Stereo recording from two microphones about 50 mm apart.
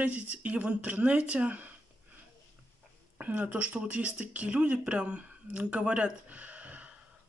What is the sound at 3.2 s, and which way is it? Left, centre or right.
Speech, right.